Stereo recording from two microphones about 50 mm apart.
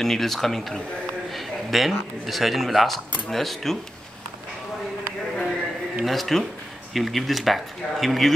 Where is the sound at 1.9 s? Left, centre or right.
Centre.